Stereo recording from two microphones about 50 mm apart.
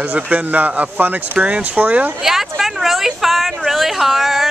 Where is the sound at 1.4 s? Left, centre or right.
Centre.